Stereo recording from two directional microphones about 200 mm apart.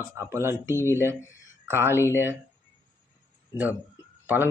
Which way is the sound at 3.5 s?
10° right (ahead or behind).